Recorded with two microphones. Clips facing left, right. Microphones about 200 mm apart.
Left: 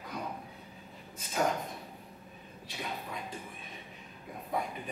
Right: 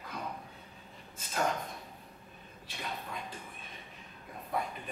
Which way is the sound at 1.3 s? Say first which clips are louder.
Left 2 dB; centre (ahead or behind).